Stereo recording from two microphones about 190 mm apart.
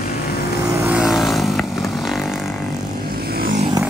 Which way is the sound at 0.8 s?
5° right (ahead or behind).